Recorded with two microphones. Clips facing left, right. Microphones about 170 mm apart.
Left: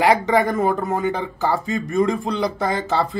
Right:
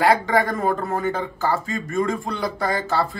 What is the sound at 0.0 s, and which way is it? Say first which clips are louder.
A man's voice: left 2 dB; 20° left (ahead or behind).